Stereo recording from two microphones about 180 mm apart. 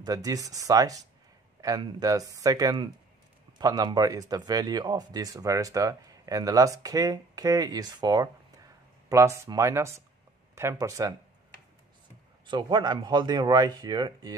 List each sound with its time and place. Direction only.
0.0 s speech: 20° right (ahead or behind)
12.4 s speech: 25° right (ahead or behind)